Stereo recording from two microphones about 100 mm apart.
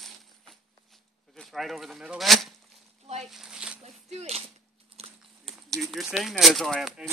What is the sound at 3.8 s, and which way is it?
Speech, 90° right.